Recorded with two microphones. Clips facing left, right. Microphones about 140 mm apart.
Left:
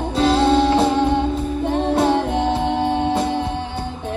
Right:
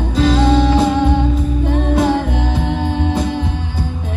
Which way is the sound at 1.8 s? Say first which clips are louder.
Right 1 dB; 25° left (ahead or behind).